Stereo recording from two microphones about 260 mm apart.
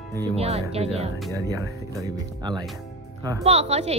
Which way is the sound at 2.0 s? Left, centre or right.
Centre.